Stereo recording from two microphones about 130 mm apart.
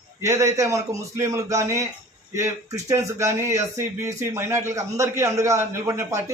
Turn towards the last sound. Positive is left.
turn(degrees=-20)  # may be behind; listen again after turning